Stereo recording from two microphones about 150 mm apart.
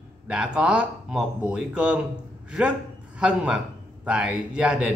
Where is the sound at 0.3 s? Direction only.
5° right (ahead or behind).